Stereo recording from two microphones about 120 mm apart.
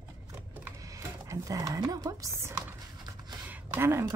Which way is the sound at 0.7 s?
30° right (ahead or behind).